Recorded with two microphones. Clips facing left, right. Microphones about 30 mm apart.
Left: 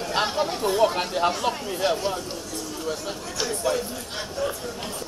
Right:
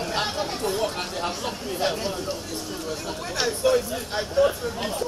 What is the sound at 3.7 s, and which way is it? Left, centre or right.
Speech, right.